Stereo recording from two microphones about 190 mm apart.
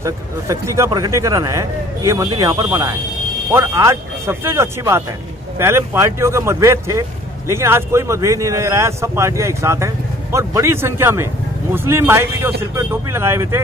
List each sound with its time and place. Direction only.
0.0 s speech: 15° right (ahead or behind)